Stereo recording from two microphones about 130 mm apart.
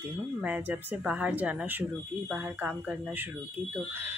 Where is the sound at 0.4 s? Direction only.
15° right (ahead or behind).